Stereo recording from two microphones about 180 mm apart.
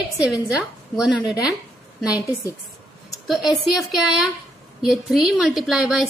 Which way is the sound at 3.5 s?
Centre (ahead or behind).